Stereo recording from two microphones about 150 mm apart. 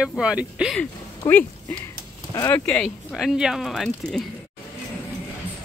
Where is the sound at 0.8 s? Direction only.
10° left (ahead or behind).